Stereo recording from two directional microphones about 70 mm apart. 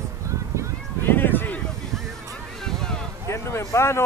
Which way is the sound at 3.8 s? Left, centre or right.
Left.